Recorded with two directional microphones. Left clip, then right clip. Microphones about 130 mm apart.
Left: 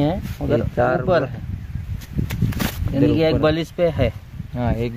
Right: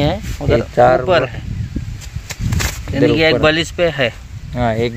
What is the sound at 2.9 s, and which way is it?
Speech, centre (ahead or behind).